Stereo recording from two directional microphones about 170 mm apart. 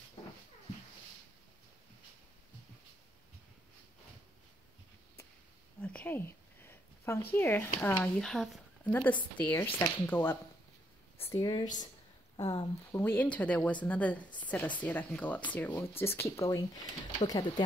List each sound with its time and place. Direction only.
5.8 s a sound: 10° left (ahead or behind)
8.0 s speech: 5° left (ahead or behind); by 13.0 s 20° left (ahead or behind)
13.0 s speech: 10° left (ahead or behind); by 17.6 s 25° left (ahead or behind)